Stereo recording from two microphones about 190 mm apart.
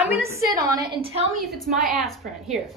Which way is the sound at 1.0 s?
30° right (ahead or behind).